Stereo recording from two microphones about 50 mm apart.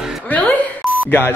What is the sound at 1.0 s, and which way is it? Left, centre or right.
Speech, left.